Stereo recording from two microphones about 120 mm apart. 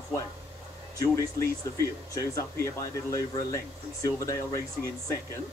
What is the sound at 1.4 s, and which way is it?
Speech, 25° left (ahead or behind).